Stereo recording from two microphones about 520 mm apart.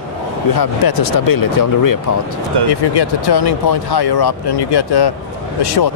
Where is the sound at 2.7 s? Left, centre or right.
Left.